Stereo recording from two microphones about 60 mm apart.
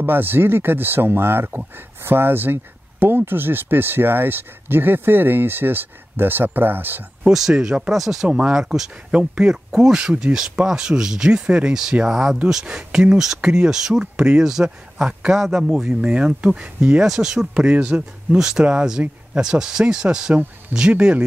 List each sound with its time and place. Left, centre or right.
0.0 s speech: right
7.2 s speech: centre
7.9 s speech: centre
8.3 s speech: right
8.5 s speech: centre
15.3 s speech: centre
17.0 s speech: centre